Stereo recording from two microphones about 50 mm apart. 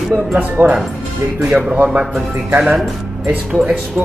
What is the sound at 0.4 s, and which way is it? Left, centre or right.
Speech, right.